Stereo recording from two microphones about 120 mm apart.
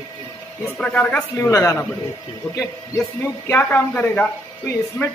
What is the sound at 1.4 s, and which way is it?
A woman's voice, 25° left (ahead or behind).